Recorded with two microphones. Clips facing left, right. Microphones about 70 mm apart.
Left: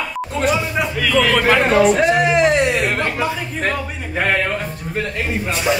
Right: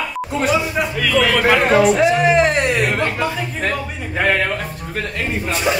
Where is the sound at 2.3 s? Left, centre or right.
Right.